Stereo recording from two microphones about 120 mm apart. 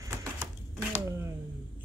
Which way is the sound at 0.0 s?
30° right (ahead or behind).